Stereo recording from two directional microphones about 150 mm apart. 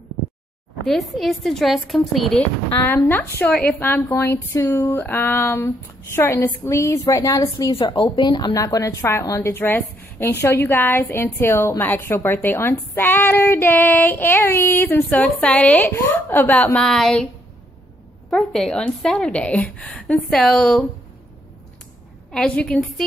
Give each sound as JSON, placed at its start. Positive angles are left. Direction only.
{"t": 0.8, "sound": "a woman's voice", "side_deg": 0}
{"t": 7.4, "sound": "a woman's voice", "side_deg": 35}
{"t": 18.3, "sound": "a woman's voice", "side_deg": 5}
{"t": 22.3, "sound": "a woman's voice", "side_deg": 5}